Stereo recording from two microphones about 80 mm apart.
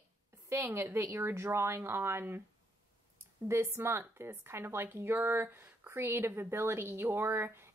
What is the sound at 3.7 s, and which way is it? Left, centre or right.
A woman's voice, right.